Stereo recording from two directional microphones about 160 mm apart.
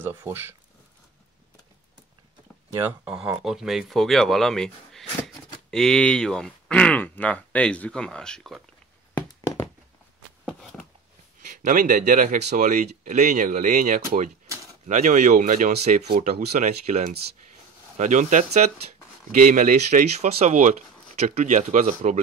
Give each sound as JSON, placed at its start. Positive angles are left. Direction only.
{"t": 0.0, "sound": "speech", "side_deg": -15}
{"t": 3.4, "sound": "speech", "side_deg": 0}
{"t": 10.4, "sound": "a sound", "side_deg": 0}
{"t": 11.4, "sound": "speech", "side_deg": -60}
{"t": 16.1, "sound": "speech", "side_deg": -65}